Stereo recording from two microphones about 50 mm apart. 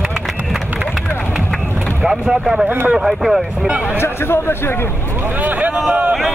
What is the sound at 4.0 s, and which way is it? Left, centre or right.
Speech, left.